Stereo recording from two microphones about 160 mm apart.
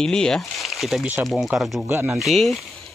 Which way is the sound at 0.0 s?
5° left (ahead or behind).